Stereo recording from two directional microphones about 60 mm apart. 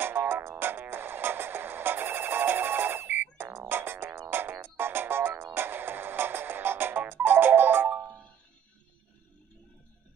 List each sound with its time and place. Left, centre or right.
0.0 s music: right